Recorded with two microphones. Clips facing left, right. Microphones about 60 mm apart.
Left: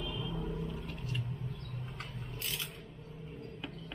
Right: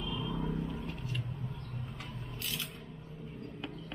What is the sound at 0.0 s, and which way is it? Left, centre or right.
Vehicle, right.